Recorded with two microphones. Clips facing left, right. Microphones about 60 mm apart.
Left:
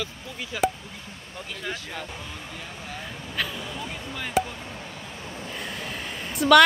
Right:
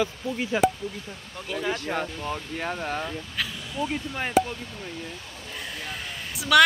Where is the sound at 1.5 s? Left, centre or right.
Centre.